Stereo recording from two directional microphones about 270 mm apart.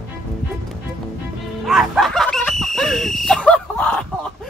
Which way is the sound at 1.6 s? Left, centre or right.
Centre.